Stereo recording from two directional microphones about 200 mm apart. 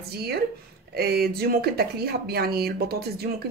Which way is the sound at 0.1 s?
50° right (ahead or behind).